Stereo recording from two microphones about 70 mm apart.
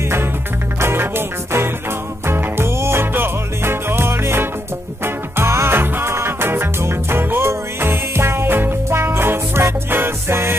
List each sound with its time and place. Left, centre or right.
0.7 s music: right